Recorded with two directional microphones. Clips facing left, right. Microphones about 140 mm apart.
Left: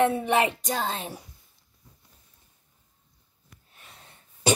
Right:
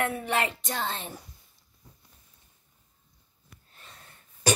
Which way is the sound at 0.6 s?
40° left (ahead or behind).